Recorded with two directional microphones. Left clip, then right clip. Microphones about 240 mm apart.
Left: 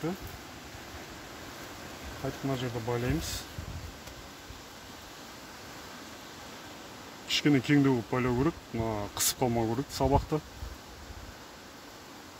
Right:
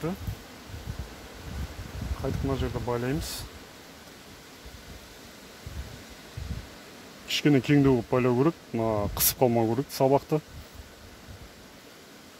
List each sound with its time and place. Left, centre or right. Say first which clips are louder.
2.5 s speech: right 2 dB; right
7.2 s speech: right 3 dB; right